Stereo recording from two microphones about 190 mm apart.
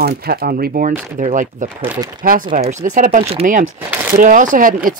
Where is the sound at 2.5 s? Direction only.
40° right (ahead or behind).